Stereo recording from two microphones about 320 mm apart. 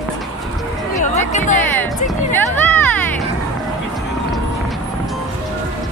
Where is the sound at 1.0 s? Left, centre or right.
Left.